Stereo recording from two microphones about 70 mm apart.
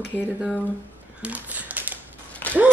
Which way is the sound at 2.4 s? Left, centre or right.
Left.